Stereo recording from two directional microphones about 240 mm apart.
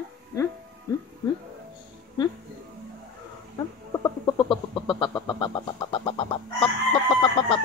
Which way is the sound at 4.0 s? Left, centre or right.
Centre.